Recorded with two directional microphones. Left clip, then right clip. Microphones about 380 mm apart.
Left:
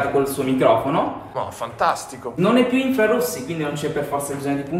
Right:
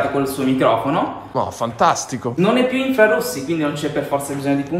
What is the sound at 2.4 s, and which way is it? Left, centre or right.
A man's voice, centre.